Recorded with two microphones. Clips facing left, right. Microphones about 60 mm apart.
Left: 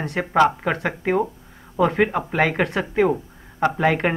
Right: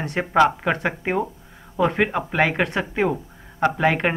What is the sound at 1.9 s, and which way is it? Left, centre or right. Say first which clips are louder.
Speech: left 1 dB; right.